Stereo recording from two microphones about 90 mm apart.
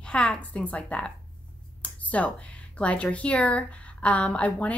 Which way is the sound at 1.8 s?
15° left (ahead or behind).